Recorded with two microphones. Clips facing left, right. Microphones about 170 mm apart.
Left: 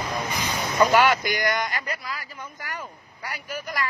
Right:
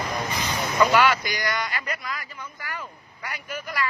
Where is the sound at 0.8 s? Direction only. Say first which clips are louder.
Left 1 dB; 45° left (ahead or behind).